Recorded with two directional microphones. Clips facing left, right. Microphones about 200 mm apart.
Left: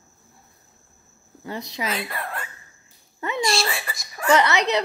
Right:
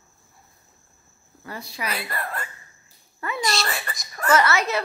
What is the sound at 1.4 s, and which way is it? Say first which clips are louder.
Speech: left 3 dB; 20° left (ahead or behind).